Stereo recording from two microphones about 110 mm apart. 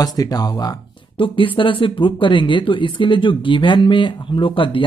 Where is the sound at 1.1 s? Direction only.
50° left (ahead or behind).